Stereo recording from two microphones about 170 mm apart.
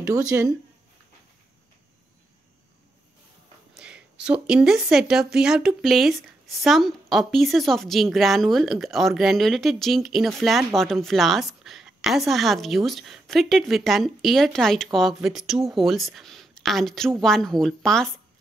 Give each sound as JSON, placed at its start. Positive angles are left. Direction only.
{"t": 0.0, "sound": "speech", "side_deg": -20}
{"t": 3.7, "sound": "speech", "side_deg": -5}